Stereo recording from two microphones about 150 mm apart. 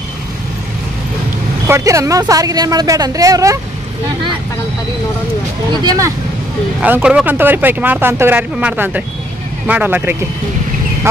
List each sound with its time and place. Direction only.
1.7 s speech: 20° right (ahead or behind)
5.7 s speech: 25° right (ahead or behind)
6.8 s speech: 10° right (ahead or behind)